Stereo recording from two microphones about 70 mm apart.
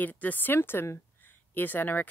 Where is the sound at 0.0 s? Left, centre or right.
Left.